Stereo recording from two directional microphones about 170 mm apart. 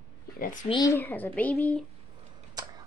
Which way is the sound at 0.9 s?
10° left (ahead or behind).